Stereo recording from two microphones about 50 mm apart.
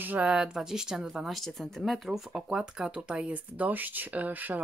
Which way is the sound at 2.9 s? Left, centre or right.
Right.